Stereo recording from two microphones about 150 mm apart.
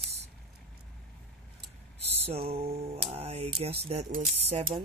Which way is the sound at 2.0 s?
45° right (ahead or behind).